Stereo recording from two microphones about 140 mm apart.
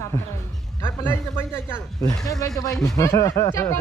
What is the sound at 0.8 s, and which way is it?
Speech, 15° left (ahead or behind).